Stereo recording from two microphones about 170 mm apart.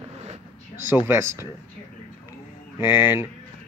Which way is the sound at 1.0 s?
15° right (ahead or behind).